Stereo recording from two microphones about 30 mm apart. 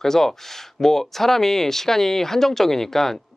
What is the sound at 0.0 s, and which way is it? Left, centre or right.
Speech, centre.